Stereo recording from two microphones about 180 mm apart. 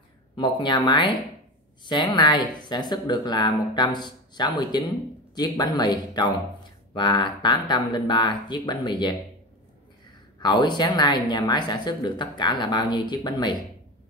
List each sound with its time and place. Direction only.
0.4 s speech: 25° left (ahead or behind)
10.4 s speech: 25° left (ahead or behind)